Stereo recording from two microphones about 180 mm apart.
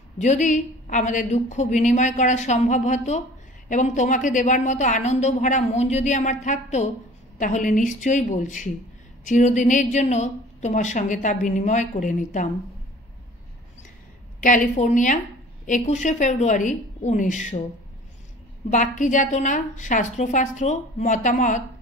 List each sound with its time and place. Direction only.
0.2 s a woman's voice: 40° left (ahead or behind)
14.4 s a woman's voice: 45° left (ahead or behind)
18.7 s a woman's voice: 45° left (ahead or behind)